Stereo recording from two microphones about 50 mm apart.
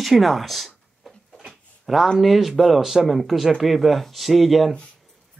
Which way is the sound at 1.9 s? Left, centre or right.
Centre.